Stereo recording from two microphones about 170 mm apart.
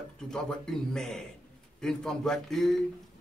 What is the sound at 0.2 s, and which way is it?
Speech, 5° left (ahead or behind).